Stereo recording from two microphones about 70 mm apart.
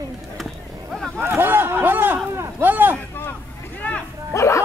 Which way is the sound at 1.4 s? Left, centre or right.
Right.